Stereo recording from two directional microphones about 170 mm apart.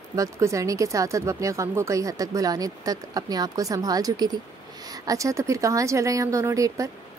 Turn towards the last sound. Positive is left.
turn(degrees=-20)  # may be behind; listen again after turning